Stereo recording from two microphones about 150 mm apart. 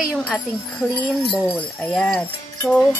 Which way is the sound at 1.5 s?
5° left (ahead or behind).